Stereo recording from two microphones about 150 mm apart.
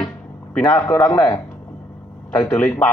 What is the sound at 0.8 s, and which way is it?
Speech, 20° left (ahead or behind).